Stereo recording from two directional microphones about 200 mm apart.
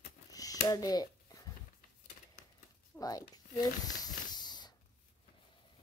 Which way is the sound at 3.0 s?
20° left (ahead or behind).